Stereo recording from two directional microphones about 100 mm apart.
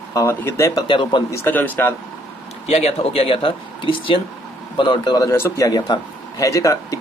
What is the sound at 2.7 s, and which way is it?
Speech, 90° left.